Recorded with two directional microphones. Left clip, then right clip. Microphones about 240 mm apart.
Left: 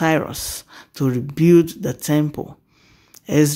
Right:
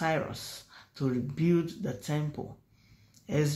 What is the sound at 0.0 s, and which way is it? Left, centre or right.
Speech, left.